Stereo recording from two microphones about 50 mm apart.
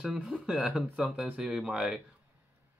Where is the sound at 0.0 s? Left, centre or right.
Centre.